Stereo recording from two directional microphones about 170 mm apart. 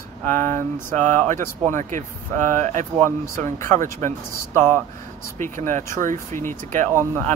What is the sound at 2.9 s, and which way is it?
Speech, 15° left (ahead or behind).